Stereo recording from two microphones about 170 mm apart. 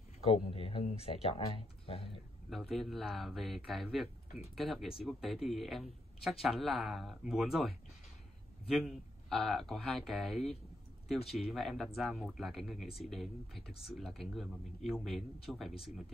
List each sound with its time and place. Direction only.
0.2 s speech: 35° left (ahead or behind)
2.5 s a man's voice: centre (ahead or behind)